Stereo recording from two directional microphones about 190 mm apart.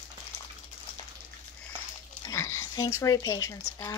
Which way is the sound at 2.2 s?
15° left (ahead or behind).